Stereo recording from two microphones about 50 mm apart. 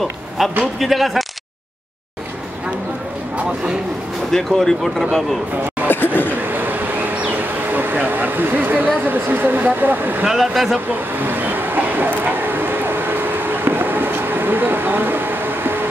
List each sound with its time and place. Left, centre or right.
0.4 s speech: centre
4.3 s speech: centre
5.9 s speech: left
6.4 s a sound: right
10.2 s speech: centre
10.9 s vehicle: right